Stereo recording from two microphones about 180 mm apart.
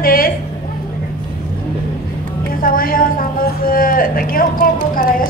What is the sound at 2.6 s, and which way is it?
A man's voice, 55° left (ahead or behind).